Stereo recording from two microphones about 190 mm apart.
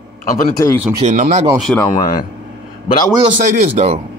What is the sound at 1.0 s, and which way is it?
Speech, 40° right (ahead or behind).